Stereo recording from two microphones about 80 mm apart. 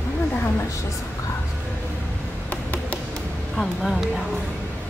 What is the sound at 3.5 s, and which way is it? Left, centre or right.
Vehicle, centre.